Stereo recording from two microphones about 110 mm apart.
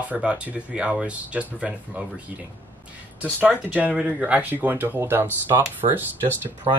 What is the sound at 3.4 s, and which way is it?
Speech, 15° right (ahead or behind).